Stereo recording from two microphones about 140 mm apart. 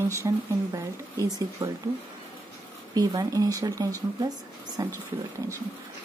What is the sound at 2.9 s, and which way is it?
A woman's voice, 25° right (ahead or behind).